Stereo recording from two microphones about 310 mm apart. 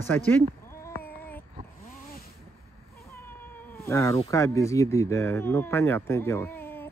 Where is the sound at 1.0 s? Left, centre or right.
Centre.